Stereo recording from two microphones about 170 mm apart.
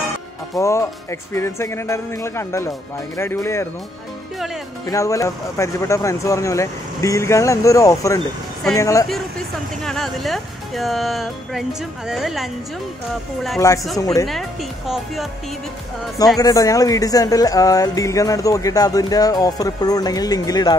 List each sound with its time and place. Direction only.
0.6 s speech: 15° left (ahead or behind)
4.8 s speech: 20° left (ahead or behind)
9.8 s speech: centre (ahead or behind)
13.9 s speech: 20° left (ahead or behind)
14.2 s speech: centre (ahead or behind)
16.3 s speech: 20° left (ahead or behind)